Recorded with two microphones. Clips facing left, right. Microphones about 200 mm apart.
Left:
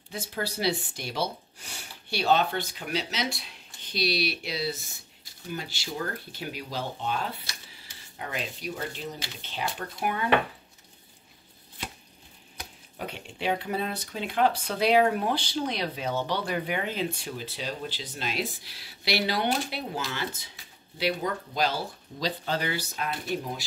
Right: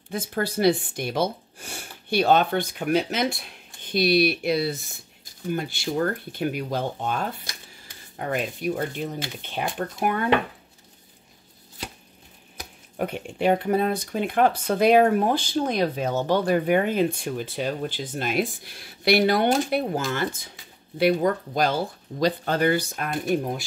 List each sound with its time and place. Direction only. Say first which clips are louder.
0.1 s speech: right 6 dB; 50° right (ahead or behind)
12.9 s speech: right 9 dB; 50° right (ahead or behind)